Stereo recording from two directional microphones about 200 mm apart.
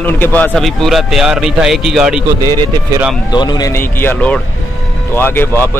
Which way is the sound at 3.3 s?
20° left (ahead or behind).